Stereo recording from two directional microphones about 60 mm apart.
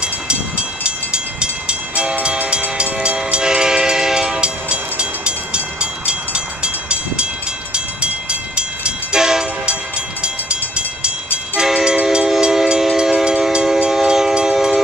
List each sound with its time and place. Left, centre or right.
0.0 s train: centre